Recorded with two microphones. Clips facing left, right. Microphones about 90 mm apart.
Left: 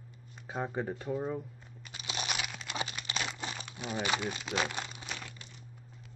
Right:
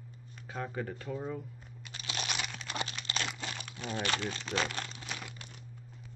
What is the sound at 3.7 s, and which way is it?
Speech, 10° left (ahead or behind).